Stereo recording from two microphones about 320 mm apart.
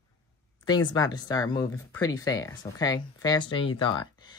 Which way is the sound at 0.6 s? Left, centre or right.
Centre.